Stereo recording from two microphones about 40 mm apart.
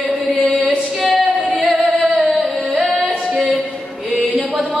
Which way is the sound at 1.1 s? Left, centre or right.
Right.